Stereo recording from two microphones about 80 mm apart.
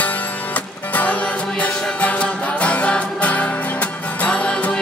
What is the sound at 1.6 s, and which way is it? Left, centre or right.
Music, centre.